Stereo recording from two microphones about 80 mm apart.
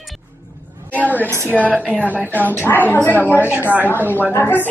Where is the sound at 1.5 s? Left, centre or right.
Centre.